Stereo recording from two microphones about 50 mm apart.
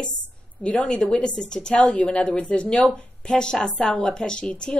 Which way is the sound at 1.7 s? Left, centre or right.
Left.